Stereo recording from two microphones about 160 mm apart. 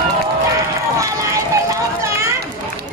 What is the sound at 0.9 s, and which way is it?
Run, 20° right (ahead or behind).